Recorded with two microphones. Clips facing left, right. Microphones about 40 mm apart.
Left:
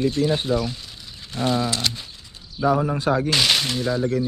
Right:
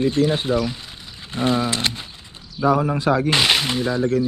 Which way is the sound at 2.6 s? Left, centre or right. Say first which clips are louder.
Right 2 dB; right.